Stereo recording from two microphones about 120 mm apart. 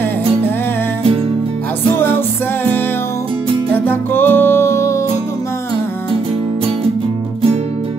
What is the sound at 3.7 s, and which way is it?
Music, 15° left (ahead or behind).